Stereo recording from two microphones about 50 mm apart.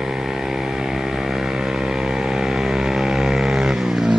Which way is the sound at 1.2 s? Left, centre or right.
Centre.